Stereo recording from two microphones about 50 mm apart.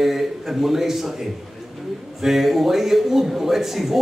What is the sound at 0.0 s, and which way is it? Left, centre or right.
Speech, centre.